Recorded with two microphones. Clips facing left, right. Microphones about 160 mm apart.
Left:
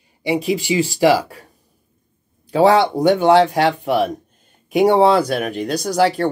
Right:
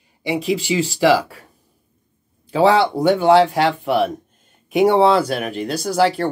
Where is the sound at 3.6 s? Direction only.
40° left (ahead or behind).